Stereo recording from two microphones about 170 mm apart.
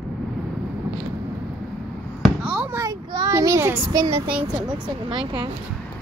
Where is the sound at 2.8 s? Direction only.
20° right (ahead or behind).